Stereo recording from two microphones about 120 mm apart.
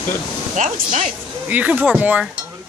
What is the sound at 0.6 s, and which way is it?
Speech, 90° right.